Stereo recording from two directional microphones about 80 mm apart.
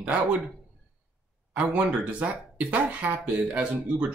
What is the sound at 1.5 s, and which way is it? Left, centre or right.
Speech, centre.